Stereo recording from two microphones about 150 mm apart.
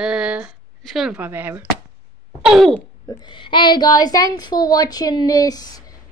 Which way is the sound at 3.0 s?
25° left (ahead or behind).